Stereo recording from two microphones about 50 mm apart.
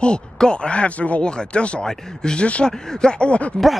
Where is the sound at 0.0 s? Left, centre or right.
Centre.